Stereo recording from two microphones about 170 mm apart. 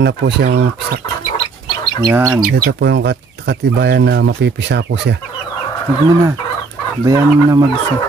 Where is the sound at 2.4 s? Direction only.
60° right (ahead or behind); by 5.1 s 90° right.